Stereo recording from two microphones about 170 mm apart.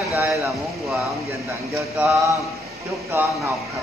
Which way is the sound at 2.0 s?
15° right (ahead or behind).